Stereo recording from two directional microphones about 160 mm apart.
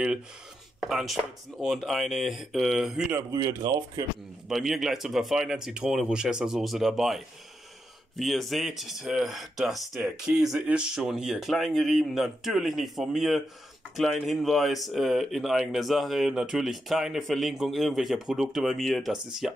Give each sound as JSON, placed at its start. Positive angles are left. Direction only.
{"t": 0.7, "sound": "speech", "side_deg": 0}
{"t": 3.2, "sound": "speech", "side_deg": -20}
{"t": 4.5, "sound": "speech", "side_deg": 0}